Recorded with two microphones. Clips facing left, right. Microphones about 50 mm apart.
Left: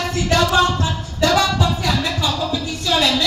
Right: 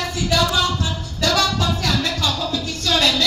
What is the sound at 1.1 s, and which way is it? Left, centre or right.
Music, left.